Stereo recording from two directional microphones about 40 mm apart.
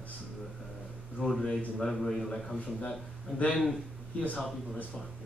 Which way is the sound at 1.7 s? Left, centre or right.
Centre.